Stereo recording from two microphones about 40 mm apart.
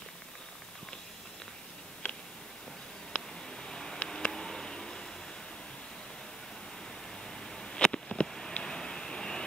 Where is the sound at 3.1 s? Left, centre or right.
Centre.